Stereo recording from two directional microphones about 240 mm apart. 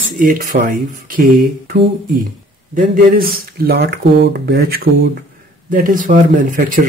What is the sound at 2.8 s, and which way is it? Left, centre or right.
Speech, right.